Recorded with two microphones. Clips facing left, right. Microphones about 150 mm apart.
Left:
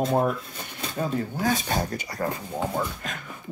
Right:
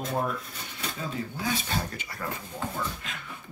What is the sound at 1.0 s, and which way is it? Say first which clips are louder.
Speech: left 8 dB; 45° left (ahead or behind).